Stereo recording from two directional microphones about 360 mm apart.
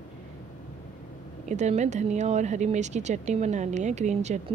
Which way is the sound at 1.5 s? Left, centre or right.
Centre.